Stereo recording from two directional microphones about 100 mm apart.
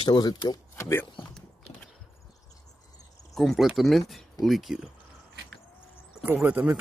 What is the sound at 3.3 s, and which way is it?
Speech, centre (ahead or behind).